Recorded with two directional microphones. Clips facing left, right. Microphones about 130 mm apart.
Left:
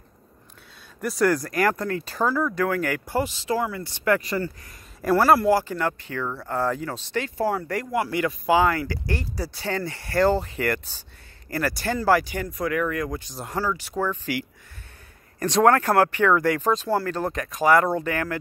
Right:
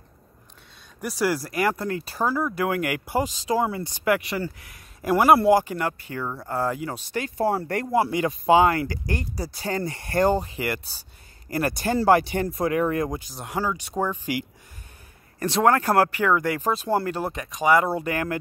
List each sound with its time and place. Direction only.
1.0 s speech: 5° right (ahead or behind)
1.8 s speech: 25° right (ahead or behind)
2.0 s speech: 10° right (ahead or behind)
7.4 s speech: 30° right (ahead or behind)
9.6 s speech: 40° right (ahead or behind)
9.9 s speech: 20° right (ahead or behind)
15.3 s a sound: 30° right (ahead or behind)
15.6 s speech: 20° right (ahead or behind)
16.2 s speech: 10° right (ahead or behind)
17.2 s speech: centre (ahead or behind); by 18.4 s 20° right (ahead or behind)